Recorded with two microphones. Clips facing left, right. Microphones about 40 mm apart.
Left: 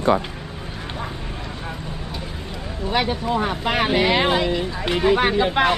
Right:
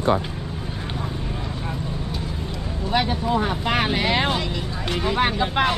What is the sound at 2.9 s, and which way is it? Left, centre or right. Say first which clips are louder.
Speech: even; centre.